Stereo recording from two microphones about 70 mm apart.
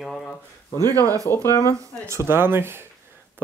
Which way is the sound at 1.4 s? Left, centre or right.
Left.